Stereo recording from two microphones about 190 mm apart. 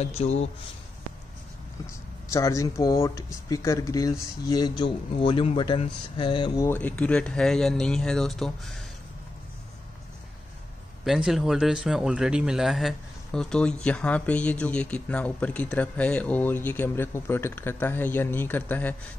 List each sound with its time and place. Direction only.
0.0 s speech: 35° left (ahead or behind)
1.9 s a man's voice: 15° left (ahead or behind)
6.7 s speech: 10° left (ahead or behind)
11.1 s a man's voice: centre (ahead or behind)